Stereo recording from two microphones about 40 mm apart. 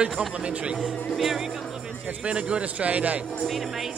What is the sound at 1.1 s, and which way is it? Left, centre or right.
Speech, centre.